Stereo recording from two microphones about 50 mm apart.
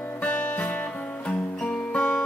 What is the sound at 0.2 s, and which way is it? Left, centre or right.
Music, left.